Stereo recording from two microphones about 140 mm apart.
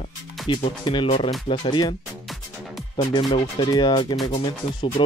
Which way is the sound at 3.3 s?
35° left (ahead or behind).